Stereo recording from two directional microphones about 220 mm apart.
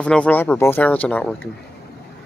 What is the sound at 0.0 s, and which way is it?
Speech, 5° left (ahead or behind).